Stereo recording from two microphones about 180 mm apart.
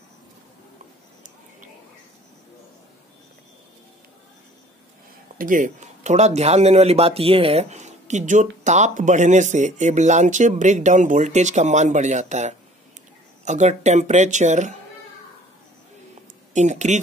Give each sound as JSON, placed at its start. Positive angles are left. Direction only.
{"t": 5.4, "sound": "speech", "side_deg": -45}
{"t": 16.5, "sound": "speech", "side_deg": -40}